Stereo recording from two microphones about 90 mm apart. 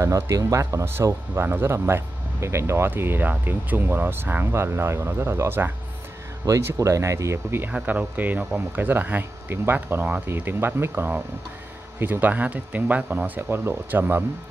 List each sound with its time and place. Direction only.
0.0 s speech: 35° right (ahead or behind)
6.4 s speech: 35° right (ahead or behind)
7.6 s speech: 20° right (ahead or behind)